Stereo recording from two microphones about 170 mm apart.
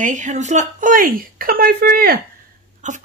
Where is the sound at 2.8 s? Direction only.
45° right (ahead or behind).